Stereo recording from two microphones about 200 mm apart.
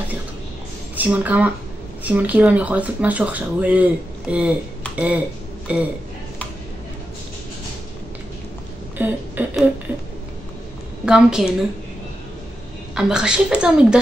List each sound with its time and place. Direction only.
0.9 s speech: 10° right (ahead or behind)
8.9 s a sound: 10° right (ahead or behind)
11.1 s a woman's voice: 5° right (ahead or behind)
12.9 s a woman's voice: 5° right (ahead or behind)